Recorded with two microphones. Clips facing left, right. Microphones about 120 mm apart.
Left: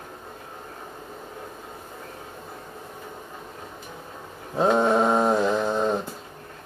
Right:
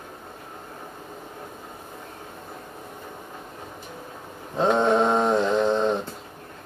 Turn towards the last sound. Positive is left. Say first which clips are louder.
# right 2 dB
turn(degrees=10)  # may be behind; listen again after turning